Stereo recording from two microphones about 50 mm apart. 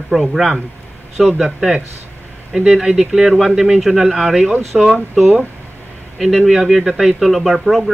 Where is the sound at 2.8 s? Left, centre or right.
Centre.